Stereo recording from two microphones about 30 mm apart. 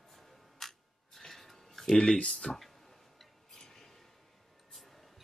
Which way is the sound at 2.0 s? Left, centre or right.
Left.